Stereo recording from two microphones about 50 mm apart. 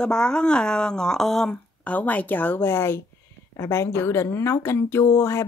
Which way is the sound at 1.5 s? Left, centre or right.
Left.